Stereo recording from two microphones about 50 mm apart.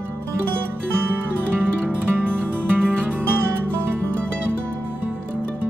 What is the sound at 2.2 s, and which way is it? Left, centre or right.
Music, centre.